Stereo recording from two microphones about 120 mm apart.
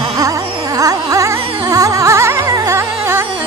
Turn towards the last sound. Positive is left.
turn(degrees=-20)  # may be behind; listen again after turning